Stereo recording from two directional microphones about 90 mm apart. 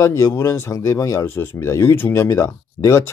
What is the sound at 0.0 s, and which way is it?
Speech, 35° left (ahead or behind).